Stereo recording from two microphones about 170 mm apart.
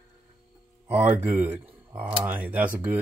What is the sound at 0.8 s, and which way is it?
Speech, 10° right (ahead or behind).